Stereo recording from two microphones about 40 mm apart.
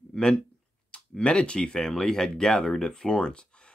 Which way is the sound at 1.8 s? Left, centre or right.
Centre.